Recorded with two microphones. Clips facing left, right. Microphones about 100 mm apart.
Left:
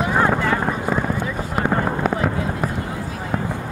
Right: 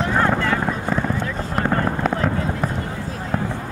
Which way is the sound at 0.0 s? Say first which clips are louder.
Left 1 dB; 10° left (ahead or behind).